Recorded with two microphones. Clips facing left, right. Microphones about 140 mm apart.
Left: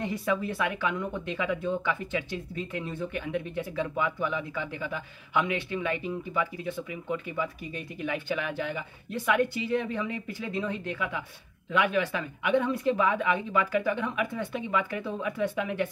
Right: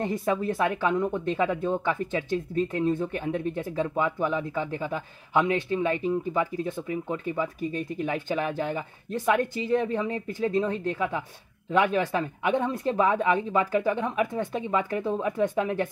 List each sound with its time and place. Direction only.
0.0 s speech: 40° right (ahead or behind)